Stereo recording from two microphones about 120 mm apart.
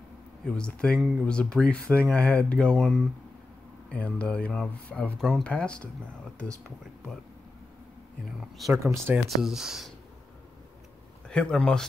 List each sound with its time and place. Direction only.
0.6 s speech: 10° left (ahead or behind)
8.4 s speech: centre (ahead or behind)
8.9 s speech: 20° right (ahead or behind)
9.3 s speech: 5° right (ahead or behind)
11.2 s speech: 5° left (ahead or behind)